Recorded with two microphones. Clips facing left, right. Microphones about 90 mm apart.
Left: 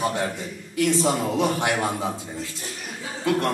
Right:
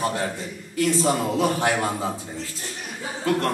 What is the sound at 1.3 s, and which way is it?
Speech, 20° left (ahead or behind).